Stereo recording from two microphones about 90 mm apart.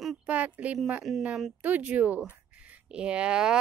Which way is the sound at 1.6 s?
15° right (ahead or behind).